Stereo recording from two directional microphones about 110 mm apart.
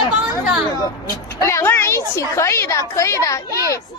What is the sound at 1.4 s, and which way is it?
A woman's voice, 25° left (ahead or behind).